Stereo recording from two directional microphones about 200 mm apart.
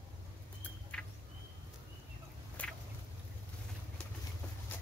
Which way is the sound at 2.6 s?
5° left (ahead or behind).